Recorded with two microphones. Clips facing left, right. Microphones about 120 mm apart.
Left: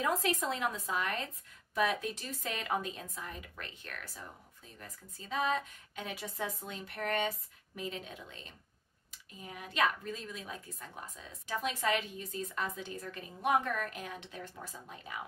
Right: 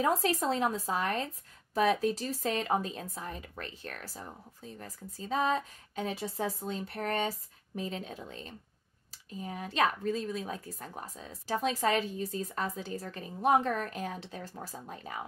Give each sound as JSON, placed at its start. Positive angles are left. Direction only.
{"t": 0.0, "sound": "speech", "side_deg": -35}